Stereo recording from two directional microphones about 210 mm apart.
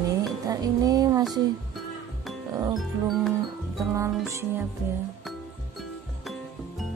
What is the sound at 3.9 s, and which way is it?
Speech, 15° right (ahead or behind).